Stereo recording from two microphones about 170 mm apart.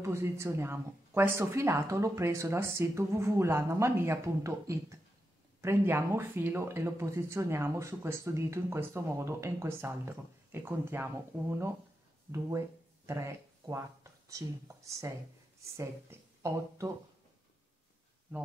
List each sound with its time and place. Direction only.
0.0 s speech: 15° right (ahead or behind)